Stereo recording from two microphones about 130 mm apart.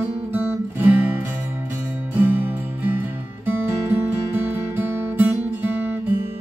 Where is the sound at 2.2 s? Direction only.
15° right (ahead or behind).